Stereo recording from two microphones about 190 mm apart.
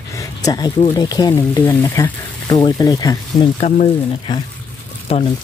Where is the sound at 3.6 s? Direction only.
30° left (ahead or behind).